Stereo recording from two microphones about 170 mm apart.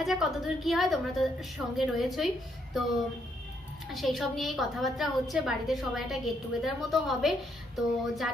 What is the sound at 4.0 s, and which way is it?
A woman's voice, centre (ahead or behind).